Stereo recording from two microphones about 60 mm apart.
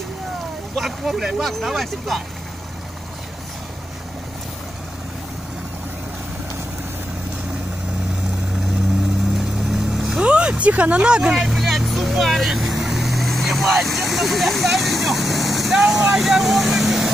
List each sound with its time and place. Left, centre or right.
0.7 s speech: centre
9.7 s vehicle: centre
10.1 s speech: centre
11.3 s vehicle: centre
15.8 s speech: centre